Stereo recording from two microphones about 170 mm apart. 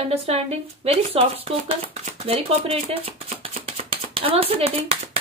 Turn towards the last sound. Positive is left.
turn(degrees=-35)  # may be behind; listen again after turning